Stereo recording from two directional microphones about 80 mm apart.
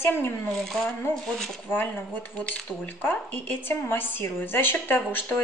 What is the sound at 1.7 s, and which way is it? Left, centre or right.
Speech, left.